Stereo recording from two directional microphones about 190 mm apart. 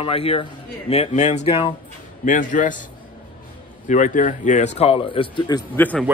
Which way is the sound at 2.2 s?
40° left (ahead or behind).